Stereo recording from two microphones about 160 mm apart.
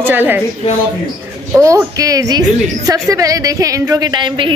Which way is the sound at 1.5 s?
20° right (ahead or behind).